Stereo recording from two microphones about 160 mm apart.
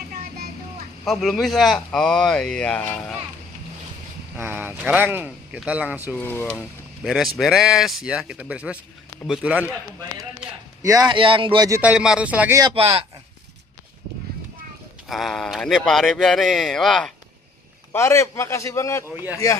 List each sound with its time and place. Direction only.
1.0 s a man's voice: centre (ahead or behind)
4.4 s speech: 15° right (ahead or behind)
6.1 s a man's voice: 10° left (ahead or behind); by 9.7 s 10° right (ahead or behind)
10.8 s speech: 20° right (ahead or behind)
11.8 s speech: 5° right (ahead or behind)
12.7 s speech: 35° right (ahead or behind)
15.0 s a man's voice: centre (ahead or behind)
17.9 s a man's voice: 15° left (ahead or behind)